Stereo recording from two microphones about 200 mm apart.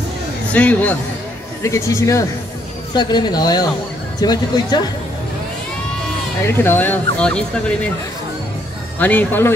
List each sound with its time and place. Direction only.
0.5 s speech: 5° left (ahead or behind)
6.4 s speech: 10° left (ahead or behind)
9.0 s speech: 10° left (ahead or behind)